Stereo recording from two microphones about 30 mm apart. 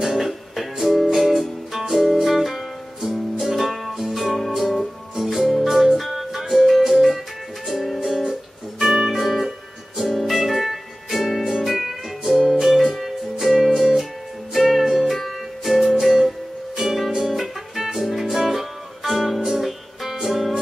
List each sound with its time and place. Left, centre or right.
0.0 s music: centre
4.0 s music: centre
8.3 s music: right
9.1 s music: centre
17.1 s music: centre
17.4 s music: centre